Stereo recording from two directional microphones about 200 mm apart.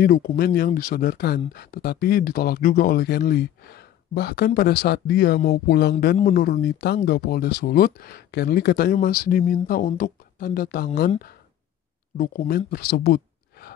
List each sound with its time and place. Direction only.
0.0 s speech: 50° left (ahead or behind)
12.2 s speech: 50° left (ahead or behind)